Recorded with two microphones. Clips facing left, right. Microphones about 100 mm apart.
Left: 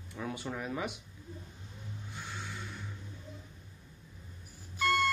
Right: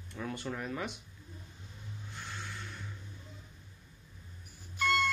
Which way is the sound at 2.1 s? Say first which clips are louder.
Left 1 dB; 5° left (ahead or behind).